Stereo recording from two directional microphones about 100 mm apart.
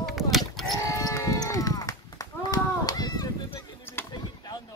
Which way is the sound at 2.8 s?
40° left (ahead or behind).